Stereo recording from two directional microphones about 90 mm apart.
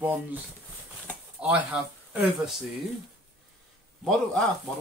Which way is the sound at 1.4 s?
10° right (ahead or behind).